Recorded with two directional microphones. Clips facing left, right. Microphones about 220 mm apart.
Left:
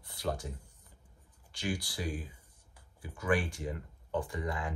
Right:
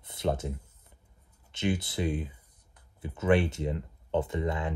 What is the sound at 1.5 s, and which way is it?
Speech, 20° right (ahead or behind).